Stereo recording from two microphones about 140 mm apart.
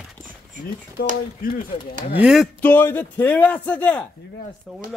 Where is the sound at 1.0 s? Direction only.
90° left.